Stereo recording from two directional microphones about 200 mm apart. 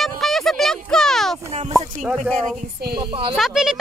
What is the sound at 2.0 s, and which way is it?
Speech, 5° right (ahead or behind).